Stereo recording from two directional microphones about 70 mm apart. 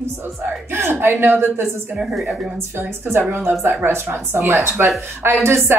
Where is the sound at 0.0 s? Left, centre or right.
Right.